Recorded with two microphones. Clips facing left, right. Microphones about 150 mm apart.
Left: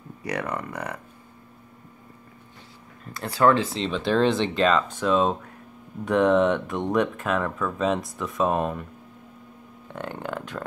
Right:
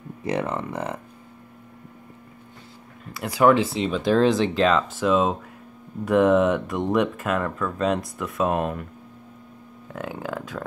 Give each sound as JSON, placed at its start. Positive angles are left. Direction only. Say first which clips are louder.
{"t": 0.2, "sound": "speech", "louder": "right 4 dB", "side_deg": -25}
{"t": 3.1, "sound": "speech", "louder": "right 2 dB", "side_deg": -10}
{"t": 9.9, "sound": "speech", "louder": "right 1 dB", "side_deg": -5}